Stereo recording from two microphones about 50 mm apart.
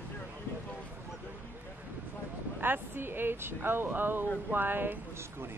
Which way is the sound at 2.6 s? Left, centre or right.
Right.